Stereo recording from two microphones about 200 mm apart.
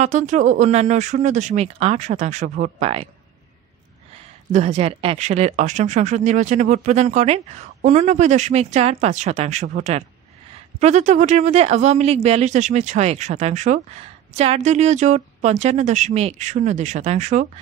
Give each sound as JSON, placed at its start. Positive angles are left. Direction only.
{"t": 0.0, "sound": "speech", "side_deg": -35}
{"t": 4.5, "sound": "speech", "side_deg": -35}